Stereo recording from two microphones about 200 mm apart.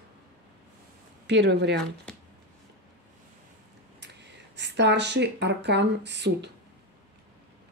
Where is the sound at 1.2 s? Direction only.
60° right (ahead or behind).